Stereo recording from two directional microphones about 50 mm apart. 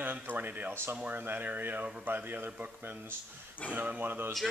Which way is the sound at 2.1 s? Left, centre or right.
Right.